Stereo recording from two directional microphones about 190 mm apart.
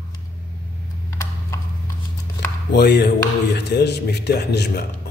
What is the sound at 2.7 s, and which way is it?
Speech, 60° left (ahead or behind).